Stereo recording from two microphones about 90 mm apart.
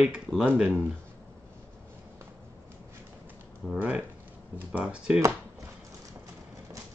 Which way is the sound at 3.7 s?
15° right (ahead or behind).